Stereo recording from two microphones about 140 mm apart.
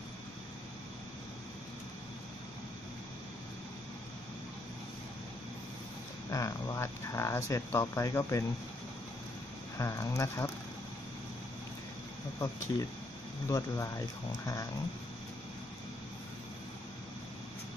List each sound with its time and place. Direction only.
6.3 s speech: 25° left (ahead or behind)
9.8 s speech: 25° left (ahead or behind)
12.4 s speech: 25° left (ahead or behind)